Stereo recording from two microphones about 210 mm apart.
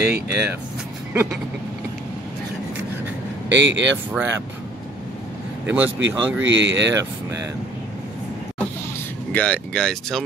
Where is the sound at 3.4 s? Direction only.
60° right (ahead or behind).